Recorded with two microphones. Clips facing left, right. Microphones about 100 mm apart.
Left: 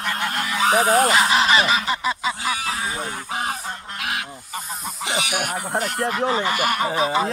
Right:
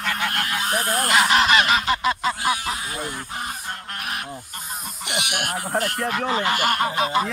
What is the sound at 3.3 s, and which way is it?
Goose, 85° left.